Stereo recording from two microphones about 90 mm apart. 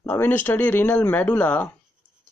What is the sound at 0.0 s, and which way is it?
Speech, 20° left (ahead or behind).